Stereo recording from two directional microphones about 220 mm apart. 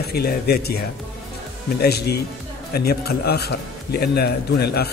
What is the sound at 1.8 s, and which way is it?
A man's voice, 45° left (ahead or behind).